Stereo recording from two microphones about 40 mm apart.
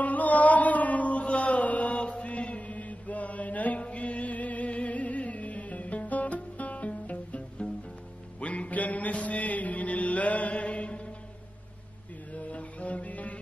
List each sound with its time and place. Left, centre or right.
0.0 s mantra: left
8.4 s music: left
12.3 s music: left